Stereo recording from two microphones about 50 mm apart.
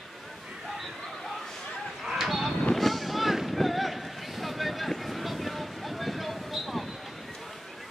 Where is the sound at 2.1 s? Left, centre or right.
Centre.